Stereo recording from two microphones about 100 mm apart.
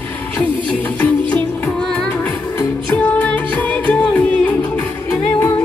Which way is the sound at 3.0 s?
15° left (ahead or behind).